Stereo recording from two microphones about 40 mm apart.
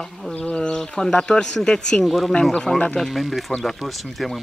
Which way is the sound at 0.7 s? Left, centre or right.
Centre.